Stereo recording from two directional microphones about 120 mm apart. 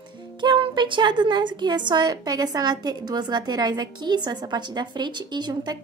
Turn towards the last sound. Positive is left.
turn(degrees=-35)  # may be behind; listen again after turning